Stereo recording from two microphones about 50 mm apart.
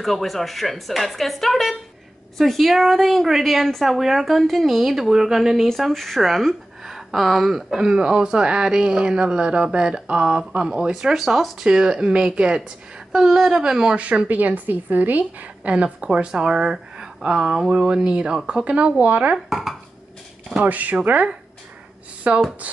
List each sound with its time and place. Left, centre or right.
0.0 s a woman's voice: centre
7.7 s speech: centre
11.6 s a woman's voice: centre
13.9 s a woman's voice: right
19.3 s a woman's voice: centre
20.6 s a woman's voice: right